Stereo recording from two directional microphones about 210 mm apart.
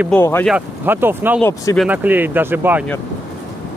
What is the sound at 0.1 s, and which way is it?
Speech, 10° left (ahead or behind).